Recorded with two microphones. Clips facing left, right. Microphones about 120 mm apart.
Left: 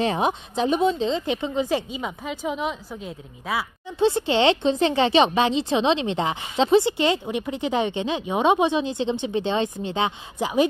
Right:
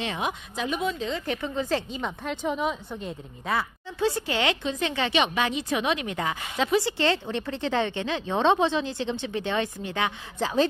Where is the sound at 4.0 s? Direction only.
25° left (ahead or behind).